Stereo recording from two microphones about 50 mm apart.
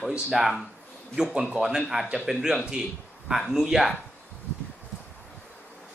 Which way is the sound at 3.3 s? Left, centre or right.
Centre.